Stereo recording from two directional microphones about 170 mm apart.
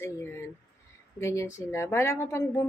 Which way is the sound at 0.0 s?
15° left (ahead or behind).